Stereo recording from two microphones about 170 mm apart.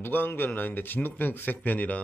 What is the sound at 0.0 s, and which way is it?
Speech, 10° left (ahead or behind).